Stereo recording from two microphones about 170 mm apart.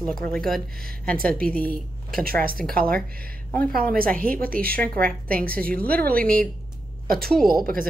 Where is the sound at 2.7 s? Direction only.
60° right (ahead or behind).